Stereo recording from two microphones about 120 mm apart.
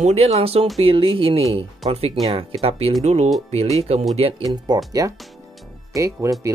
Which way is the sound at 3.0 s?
65° right (ahead or behind).